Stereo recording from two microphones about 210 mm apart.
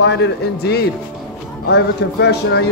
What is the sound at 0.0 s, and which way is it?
A man's voice, 55° left (ahead or behind).